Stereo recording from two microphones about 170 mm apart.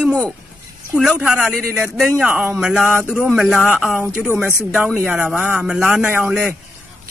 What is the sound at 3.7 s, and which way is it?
Speech, 10° right (ahead or behind).